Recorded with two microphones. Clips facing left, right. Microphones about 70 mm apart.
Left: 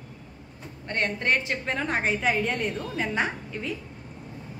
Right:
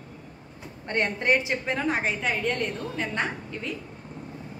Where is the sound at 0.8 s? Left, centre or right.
Right.